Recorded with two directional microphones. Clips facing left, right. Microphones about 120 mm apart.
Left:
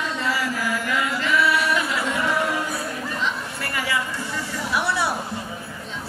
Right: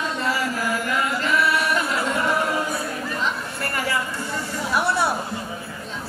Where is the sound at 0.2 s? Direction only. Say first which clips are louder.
Right 1 dB; 45° right (ahead or behind).